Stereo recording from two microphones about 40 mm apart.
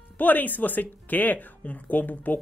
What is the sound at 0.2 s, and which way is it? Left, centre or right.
Speech, left.